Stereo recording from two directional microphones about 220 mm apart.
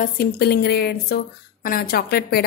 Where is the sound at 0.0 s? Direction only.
45° left (ahead or behind).